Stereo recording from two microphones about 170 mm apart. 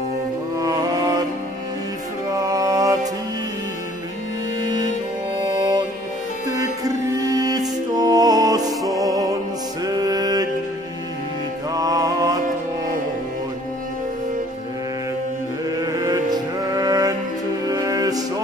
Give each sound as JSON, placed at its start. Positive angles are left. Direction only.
{"t": 0.6, "sound": "music", "side_deg": -20}
{"t": 2.3, "sound": "music", "side_deg": -20}
{"t": 5.4, "sound": "music", "side_deg": -25}
{"t": 7.3, "sound": "music", "side_deg": -20}
{"t": 11.7, "sound": "mantra", "side_deg": -20}
{"t": 15.8, "sound": "music", "side_deg": -20}